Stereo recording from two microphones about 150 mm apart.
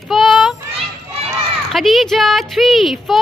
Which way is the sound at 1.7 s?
Centre (ahead or behind).